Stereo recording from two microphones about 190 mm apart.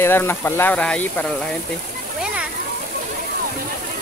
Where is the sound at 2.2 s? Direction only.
5° right (ahead or behind).